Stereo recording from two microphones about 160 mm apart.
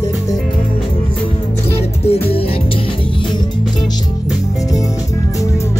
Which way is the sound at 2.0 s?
40° left (ahead or behind).